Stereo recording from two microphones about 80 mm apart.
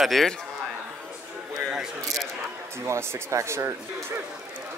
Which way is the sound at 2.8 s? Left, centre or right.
Right.